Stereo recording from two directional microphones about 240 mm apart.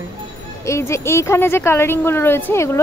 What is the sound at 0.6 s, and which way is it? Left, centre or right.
Speech, centre.